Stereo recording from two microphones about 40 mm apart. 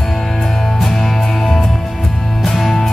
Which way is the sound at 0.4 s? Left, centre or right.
Centre.